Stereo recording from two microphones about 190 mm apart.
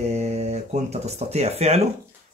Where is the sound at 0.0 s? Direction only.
35° right (ahead or behind).